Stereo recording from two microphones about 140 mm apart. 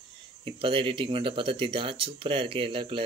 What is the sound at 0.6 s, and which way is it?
Speech, 40° right (ahead or behind).